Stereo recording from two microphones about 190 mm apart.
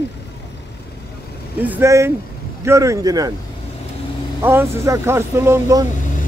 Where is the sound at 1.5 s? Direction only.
10° right (ahead or behind).